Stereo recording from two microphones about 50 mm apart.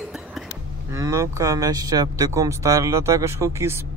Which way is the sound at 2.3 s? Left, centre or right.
Right.